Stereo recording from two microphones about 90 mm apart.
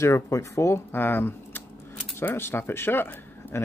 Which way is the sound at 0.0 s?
35° left (ahead or behind).